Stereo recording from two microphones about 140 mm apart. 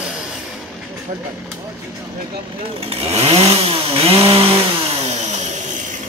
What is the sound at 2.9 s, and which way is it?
Chainsaw, 45° right (ahead or behind).